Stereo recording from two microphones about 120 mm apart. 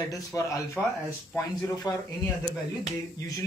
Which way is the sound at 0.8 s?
15° left (ahead or behind).